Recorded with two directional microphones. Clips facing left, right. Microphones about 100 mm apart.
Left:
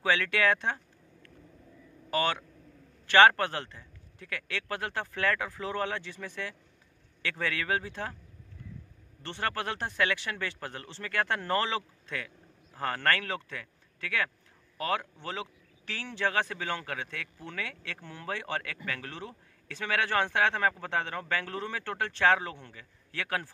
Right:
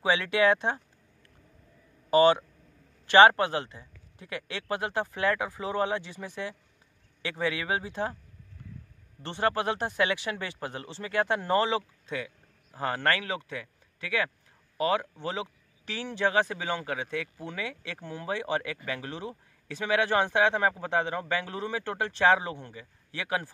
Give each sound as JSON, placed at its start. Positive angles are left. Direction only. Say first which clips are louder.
{"t": 0.0, "sound": "speech", "louder": "right 3 dB", "side_deg": -15}
{"t": 9.2, "sound": "speech", "louder": "right 6 dB", "side_deg": -20}